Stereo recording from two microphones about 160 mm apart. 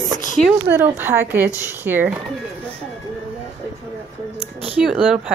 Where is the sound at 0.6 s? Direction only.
15° right (ahead or behind).